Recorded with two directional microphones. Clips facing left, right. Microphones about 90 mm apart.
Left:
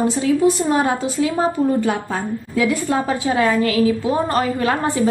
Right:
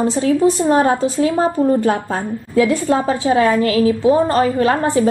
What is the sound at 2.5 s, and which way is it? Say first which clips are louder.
A woman's voice: right 4 dB; 30° right (ahead or behind).